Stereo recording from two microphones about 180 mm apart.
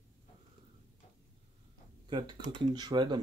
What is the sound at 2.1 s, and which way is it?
Speech, 25° right (ahead or behind).